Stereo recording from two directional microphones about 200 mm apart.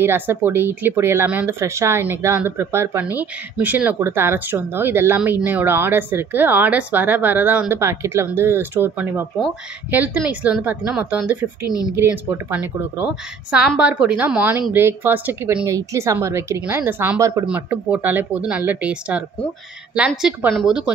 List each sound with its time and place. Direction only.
0.0 s speech: 10° right (ahead or behind)
11.6 s speech: 20° left (ahead or behind)
11.9 s speech: 10° right (ahead or behind)